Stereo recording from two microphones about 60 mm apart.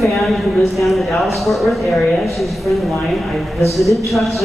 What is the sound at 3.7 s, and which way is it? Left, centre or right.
Speech, centre.